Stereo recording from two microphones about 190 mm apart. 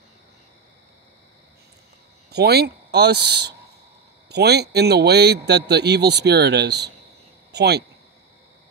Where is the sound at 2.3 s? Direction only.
60° right (ahead or behind).